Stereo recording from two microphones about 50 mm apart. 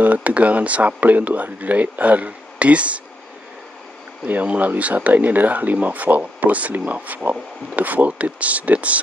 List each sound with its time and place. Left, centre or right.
0.0 s speech: right
4.3 s speech: right